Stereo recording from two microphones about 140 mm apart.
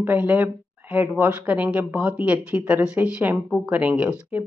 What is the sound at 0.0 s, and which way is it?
A woman's voice, 10° right (ahead or behind).